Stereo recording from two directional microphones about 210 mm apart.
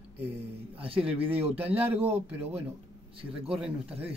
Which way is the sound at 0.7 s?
25° right (ahead or behind).